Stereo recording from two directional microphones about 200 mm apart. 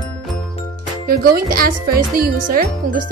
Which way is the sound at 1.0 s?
50° right (ahead or behind).